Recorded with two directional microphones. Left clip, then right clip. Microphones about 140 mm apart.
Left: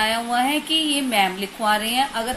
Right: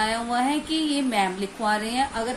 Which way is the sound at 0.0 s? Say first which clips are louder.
Left 3 dB; 20° left (ahead or behind).